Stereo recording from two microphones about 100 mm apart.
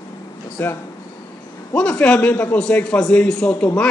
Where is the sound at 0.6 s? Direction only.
20° left (ahead or behind).